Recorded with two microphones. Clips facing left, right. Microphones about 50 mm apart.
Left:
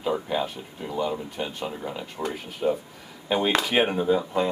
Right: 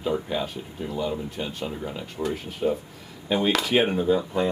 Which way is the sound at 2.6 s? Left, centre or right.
Centre.